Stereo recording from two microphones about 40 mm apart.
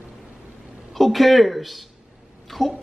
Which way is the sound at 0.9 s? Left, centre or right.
Centre.